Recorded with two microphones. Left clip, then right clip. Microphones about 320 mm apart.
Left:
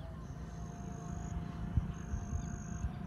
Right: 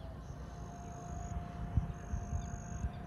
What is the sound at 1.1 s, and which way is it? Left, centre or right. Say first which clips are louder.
Vehicle: right 1 dB; centre.